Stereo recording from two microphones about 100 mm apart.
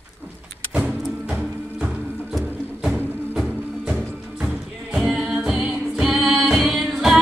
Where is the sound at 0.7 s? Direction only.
15° right (ahead or behind).